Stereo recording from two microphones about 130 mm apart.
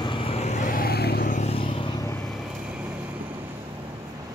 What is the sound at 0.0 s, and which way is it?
Vehicle, 45° left (ahead or behind).